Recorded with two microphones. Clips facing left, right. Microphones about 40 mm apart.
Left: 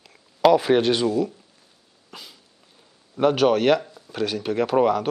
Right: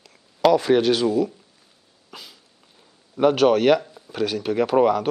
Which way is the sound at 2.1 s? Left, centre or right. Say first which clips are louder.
Even; centre.